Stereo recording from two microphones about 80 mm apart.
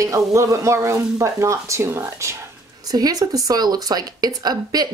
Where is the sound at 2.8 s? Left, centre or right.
Right.